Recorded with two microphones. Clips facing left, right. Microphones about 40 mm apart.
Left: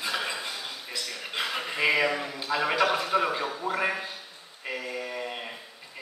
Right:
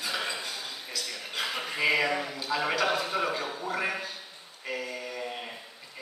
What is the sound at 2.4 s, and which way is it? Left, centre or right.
A man's voice, centre.